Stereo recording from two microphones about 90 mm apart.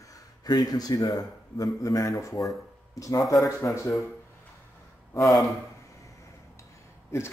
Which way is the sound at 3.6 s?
40° left (ahead or behind).